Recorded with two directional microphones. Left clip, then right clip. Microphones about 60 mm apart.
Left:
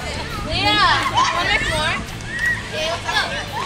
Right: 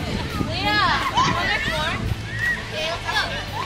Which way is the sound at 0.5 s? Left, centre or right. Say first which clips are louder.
Left 4 dB; left.